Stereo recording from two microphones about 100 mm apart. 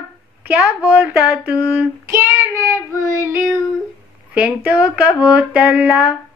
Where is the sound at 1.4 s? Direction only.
20° right (ahead or behind).